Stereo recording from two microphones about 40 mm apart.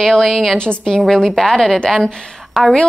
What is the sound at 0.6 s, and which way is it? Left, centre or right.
A woman's voice, left.